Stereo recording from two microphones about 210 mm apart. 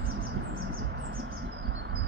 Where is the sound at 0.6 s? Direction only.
50° right (ahead or behind).